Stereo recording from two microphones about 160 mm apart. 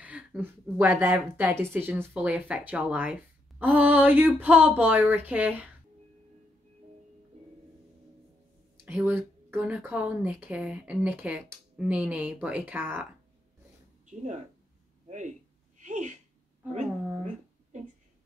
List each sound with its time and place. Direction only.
0.0 s a woman's voice: 10° right (ahead or behind)
8.8 s a woman's voice: 15° right (ahead or behind)
15.8 s a sound: 50° right (ahead or behind)